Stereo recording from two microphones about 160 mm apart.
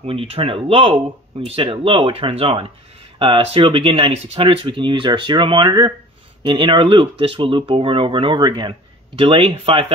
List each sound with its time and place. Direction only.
0.0 s speech: 35° right (ahead or behind)